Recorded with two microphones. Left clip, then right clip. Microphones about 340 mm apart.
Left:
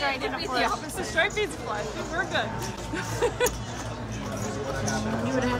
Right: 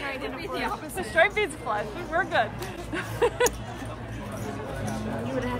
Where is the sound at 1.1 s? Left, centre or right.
Right.